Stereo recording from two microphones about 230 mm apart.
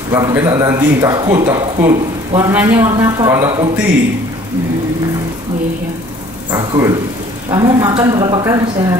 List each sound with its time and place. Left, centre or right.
0.1 s speech: centre
6.5 s speech: centre